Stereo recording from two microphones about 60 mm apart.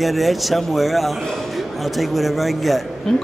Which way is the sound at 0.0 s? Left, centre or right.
Centre.